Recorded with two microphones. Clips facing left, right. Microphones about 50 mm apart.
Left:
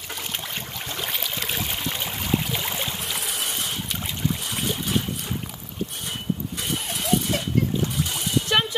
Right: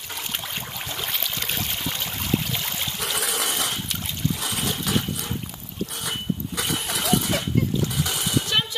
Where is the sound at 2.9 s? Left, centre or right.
Right.